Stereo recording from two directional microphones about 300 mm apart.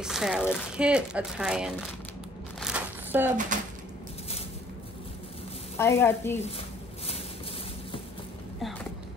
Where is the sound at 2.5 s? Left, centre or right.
Centre.